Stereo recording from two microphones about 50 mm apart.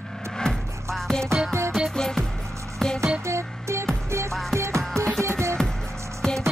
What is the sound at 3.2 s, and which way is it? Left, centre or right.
Music, right.